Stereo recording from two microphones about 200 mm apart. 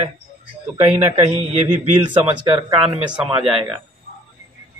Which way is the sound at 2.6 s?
30° right (ahead or behind).